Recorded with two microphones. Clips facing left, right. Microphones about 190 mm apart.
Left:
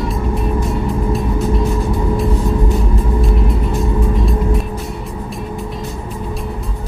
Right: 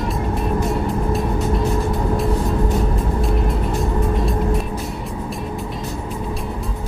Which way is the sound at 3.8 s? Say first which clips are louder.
Left 2 dB; centre (ahead or behind).